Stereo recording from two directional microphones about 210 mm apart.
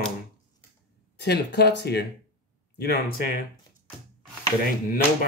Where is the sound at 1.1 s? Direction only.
50° left (ahead or behind).